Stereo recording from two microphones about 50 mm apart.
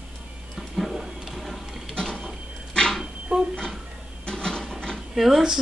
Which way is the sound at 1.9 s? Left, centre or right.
Centre.